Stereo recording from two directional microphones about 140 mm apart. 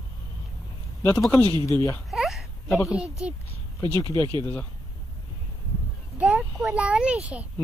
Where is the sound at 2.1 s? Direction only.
Centre (ahead or behind).